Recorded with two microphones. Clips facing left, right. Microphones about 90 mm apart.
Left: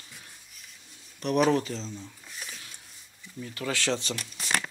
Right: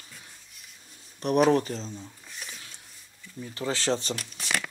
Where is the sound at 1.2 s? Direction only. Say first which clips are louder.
Right 2 dB; 40° right (ahead or behind).